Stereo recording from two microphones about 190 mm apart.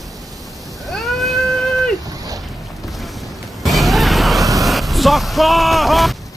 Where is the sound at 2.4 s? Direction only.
Centre (ahead or behind).